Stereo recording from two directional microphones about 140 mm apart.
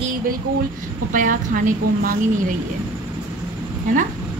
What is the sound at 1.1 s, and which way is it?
A woman's voice, 70° right (ahead or behind).